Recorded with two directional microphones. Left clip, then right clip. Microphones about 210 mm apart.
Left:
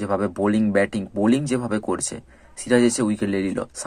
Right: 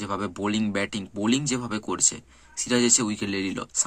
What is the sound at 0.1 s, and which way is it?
Speech, 15° right (ahead or behind).